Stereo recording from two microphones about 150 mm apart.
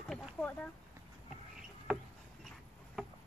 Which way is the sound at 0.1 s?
5° left (ahead or behind).